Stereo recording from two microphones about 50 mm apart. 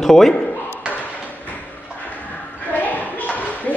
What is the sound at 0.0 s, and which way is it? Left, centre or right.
Speech, centre.